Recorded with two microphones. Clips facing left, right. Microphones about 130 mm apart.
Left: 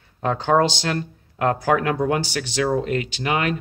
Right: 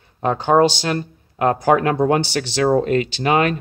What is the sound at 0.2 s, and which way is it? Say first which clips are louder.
Speech: right 4 dB; 20° right (ahead or behind).